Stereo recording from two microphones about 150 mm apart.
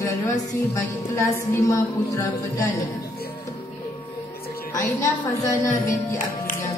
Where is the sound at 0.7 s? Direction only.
20° left (ahead or behind).